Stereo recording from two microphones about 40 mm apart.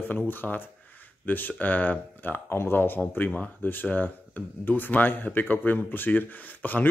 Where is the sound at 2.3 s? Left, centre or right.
Left.